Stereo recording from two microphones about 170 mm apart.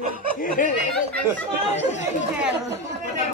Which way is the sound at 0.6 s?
50° left (ahead or behind).